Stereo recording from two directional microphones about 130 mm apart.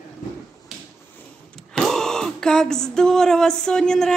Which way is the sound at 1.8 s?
5° left (ahead or behind).